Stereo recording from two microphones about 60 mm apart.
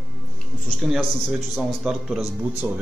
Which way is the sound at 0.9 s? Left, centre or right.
Centre.